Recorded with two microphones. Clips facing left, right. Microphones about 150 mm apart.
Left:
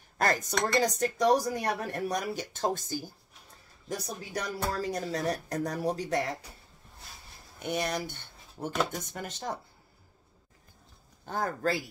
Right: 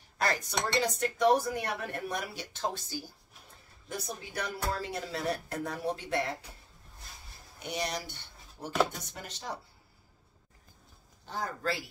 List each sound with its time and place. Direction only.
0.2 s speech: 45° left (ahead or behind)
4.3 s speech: 40° left (ahead or behind)
7.6 s speech: 50° left (ahead or behind)
11.2 s speech: 50° left (ahead or behind)